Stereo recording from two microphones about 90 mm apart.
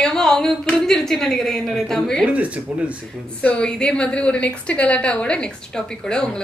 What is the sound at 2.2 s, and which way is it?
Speech, 15° right (ahead or behind).